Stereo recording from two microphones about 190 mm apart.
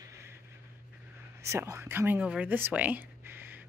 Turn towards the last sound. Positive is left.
turn(degrees=-10)  # may be behind; listen again after turning